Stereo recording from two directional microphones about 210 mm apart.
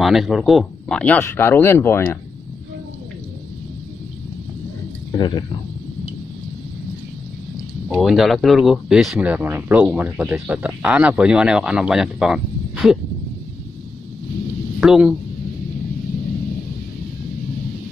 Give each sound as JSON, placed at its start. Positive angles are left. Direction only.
{"t": 0.0, "sound": "speech", "side_deg": 0}
{"t": 5.1, "sound": "speech", "side_deg": 20}
{"t": 7.9, "sound": "speech", "side_deg": 0}
{"t": 14.8, "sound": "speech", "side_deg": -5}